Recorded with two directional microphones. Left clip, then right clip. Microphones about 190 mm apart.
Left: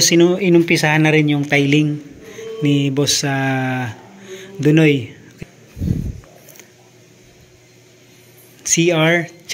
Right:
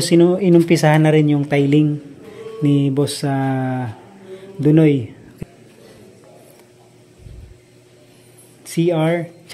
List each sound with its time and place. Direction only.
0.0 s speech: 15° right (ahead or behind)
2.3 s mantra: 15° right (ahead or behind)
8.6 s speech: 10° right (ahead or behind)